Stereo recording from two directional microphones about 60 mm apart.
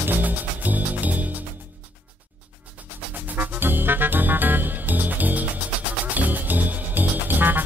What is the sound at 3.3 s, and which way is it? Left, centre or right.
Music, right.